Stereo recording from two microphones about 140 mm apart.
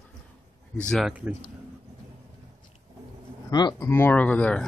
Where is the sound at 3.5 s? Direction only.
30° left (ahead or behind).